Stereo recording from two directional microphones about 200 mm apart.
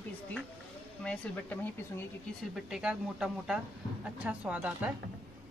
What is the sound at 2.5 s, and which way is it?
Speech, 5° right (ahead or behind).